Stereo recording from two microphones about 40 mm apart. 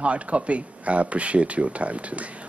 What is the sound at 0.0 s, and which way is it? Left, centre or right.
Speech, right.